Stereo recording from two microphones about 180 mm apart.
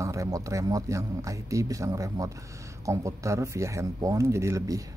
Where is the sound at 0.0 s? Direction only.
15° right (ahead or behind).